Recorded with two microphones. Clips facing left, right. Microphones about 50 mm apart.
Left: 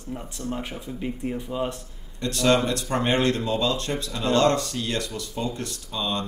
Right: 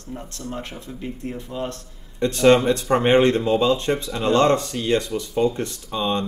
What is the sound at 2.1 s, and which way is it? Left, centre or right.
Speech, right.